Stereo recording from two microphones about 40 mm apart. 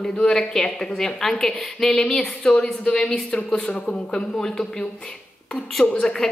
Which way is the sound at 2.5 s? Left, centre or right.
Left.